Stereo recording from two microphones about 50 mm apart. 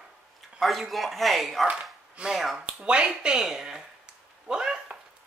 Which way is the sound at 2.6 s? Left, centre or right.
Right.